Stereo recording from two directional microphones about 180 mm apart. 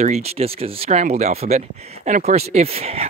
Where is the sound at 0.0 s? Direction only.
35° right (ahead or behind).